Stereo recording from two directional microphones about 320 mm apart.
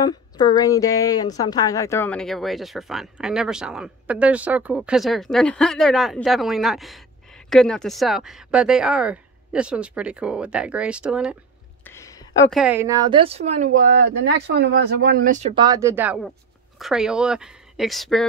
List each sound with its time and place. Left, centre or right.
0.0 s speech: centre
11.8 s a sound: centre
12.5 s a woman's voice: centre